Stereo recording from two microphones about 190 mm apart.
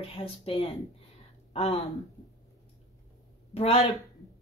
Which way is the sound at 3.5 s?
35° left (ahead or behind).